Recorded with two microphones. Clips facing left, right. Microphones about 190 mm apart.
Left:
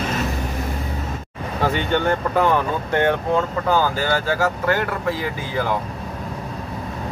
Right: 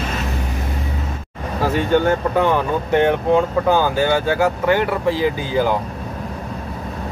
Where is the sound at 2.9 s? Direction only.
15° right (ahead or behind).